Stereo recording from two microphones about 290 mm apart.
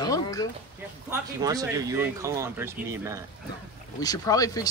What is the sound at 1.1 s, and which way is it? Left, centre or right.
Speech, centre.